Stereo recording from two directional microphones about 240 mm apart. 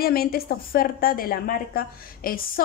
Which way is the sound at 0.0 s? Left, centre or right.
Left.